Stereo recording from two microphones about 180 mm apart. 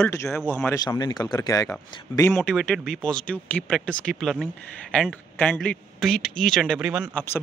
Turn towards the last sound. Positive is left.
turn(degrees=-5)  # may be behind; listen again after turning